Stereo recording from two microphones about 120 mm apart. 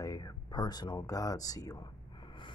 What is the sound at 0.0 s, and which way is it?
Speech, 30° left (ahead or behind).